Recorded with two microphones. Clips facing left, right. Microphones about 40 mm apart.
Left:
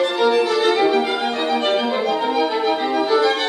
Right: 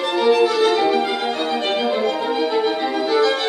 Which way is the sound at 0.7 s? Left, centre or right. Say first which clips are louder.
Left 1 dB; centre.